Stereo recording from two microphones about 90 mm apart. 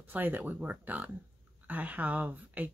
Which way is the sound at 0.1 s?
20° right (ahead or behind).